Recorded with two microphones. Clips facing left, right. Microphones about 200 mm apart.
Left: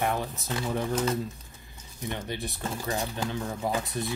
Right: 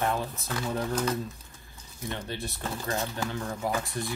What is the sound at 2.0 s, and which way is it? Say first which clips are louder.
Speech: left 1 dB; 15° left (ahead or behind).